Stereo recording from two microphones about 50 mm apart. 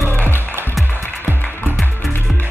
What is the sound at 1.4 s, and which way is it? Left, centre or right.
Music, left.